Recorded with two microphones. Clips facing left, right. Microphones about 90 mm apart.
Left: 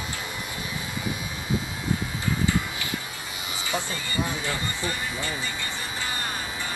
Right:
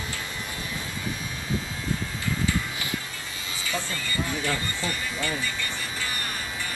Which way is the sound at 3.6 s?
20° left (ahead or behind).